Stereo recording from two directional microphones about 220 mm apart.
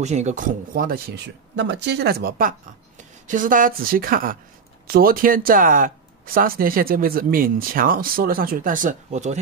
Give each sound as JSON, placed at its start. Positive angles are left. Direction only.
{"t": 0.0, "sound": "speech", "side_deg": -30}